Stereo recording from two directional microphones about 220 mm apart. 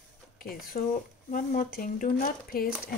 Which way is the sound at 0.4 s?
40° left (ahead or behind).